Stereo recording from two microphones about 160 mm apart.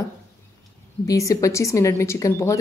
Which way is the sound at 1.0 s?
20° left (ahead or behind).